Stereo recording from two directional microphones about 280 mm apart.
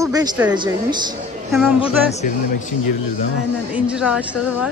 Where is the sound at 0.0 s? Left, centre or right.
Centre.